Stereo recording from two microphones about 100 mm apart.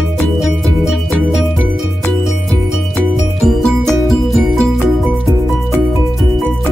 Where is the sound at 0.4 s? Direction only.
Centre (ahead or behind).